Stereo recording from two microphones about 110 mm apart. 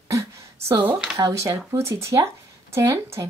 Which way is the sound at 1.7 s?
25° right (ahead or behind).